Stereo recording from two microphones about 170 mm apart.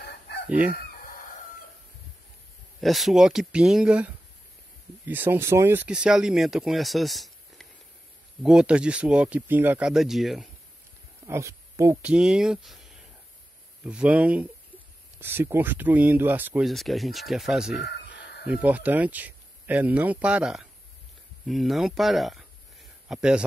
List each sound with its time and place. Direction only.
0.7 s chicken: 55° left (ahead or behind)
2.8 s speech: centre (ahead or behind)
11.2 s speech: 15° right (ahead or behind)
12.1 s speech: 5° right (ahead or behind)
16.6 s speech: centre (ahead or behind)
17.7 s a sound: 80° left
18.5 s a man's voice: 10° right (ahead or behind)